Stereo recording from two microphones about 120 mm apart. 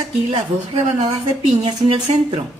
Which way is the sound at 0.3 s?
60° right (ahead or behind).